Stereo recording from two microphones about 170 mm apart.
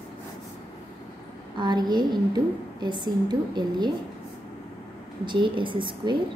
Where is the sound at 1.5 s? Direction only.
25° right (ahead or behind).